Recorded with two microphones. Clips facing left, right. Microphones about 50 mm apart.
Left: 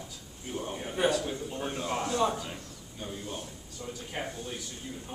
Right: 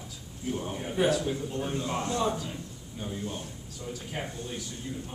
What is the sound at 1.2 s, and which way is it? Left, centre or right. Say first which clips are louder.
Speech: right 3 dB; centre.